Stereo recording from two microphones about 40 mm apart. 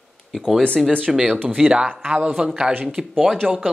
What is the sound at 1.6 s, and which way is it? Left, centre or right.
Speech, right.